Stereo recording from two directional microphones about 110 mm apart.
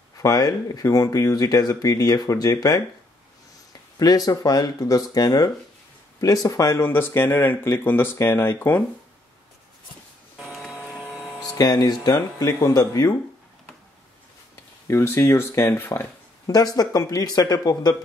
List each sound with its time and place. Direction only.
0.2 s speech: 35° left (ahead or behind)
4.0 s speech: 35° left (ahead or behind); by 8.8 s 20° left (ahead or behind)
10.4 s printer: centre (ahead or behind)
11.4 s speech: 35° left (ahead or behind)
14.5 s speech: 25° left (ahead or behind)
16.4 s speech: 35° left (ahead or behind)